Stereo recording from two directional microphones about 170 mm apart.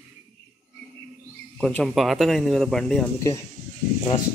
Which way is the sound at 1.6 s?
Centre (ahead or behind).